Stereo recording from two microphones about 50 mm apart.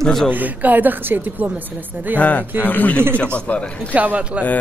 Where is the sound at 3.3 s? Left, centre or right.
Left.